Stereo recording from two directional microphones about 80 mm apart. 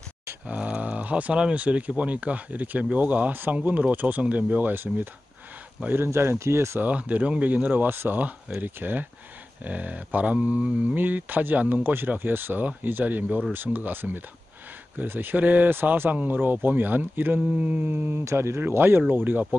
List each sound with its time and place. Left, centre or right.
0.6 s speech: centre
5.9 s speech: right
6.8 s speech: centre
18.2 s speech: right